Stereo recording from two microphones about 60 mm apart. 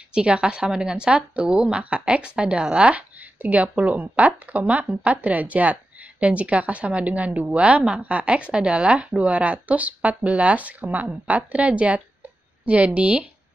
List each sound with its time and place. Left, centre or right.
0.1 s speech: centre